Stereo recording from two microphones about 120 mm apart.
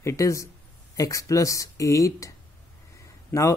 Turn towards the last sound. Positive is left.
turn(degrees=15)  # may be behind; listen again after turning